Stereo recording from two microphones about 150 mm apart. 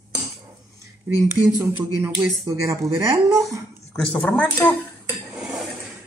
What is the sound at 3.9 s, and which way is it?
Speech, 5° left (ahead or behind).